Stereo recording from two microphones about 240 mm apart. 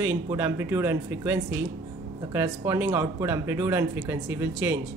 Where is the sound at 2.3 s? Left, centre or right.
Centre.